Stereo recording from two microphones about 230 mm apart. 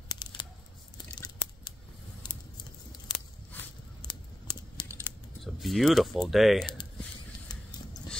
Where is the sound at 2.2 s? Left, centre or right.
Centre.